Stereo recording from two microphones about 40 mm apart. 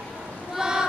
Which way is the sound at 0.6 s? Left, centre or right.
Centre.